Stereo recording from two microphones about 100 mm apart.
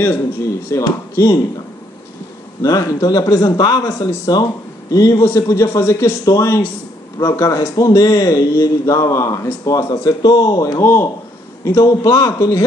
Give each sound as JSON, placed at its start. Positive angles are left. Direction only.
{"t": 0.8, "sound": "a man's voice", "side_deg": 35}
{"t": 2.6, "sound": "a man's voice", "side_deg": 35}
{"t": 10.8, "sound": "a man's voice", "side_deg": 25}